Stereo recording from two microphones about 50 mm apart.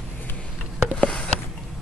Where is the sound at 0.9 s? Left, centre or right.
Centre.